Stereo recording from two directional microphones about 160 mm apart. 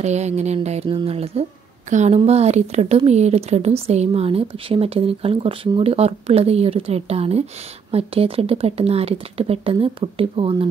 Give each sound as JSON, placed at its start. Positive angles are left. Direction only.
{"t": 0.0, "sound": "speech", "side_deg": -45}